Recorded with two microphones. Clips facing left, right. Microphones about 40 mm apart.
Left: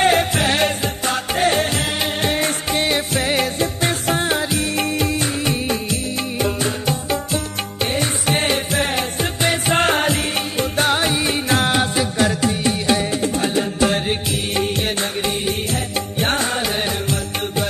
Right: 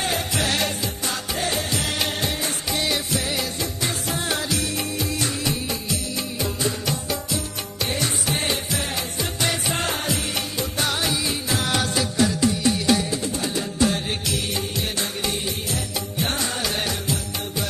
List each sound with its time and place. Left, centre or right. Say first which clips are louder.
0.0 s music: left 8 dB; left
4.3 s music: left 5 dB; left
4.7 s music: left 6 dB; left
7.8 s music: left 4 dB; left
11.7 s music: left 4 dB; left
13.1 s music: left 6 dB; left